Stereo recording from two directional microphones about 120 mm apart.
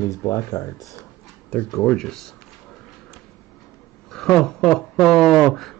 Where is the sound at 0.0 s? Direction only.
25° left (ahead or behind).